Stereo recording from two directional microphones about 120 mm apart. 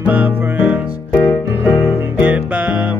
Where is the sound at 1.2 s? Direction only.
25° left (ahead or behind).